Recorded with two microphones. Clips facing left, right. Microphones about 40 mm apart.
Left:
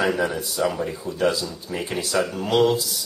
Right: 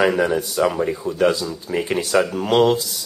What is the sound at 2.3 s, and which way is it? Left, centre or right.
Speech, right.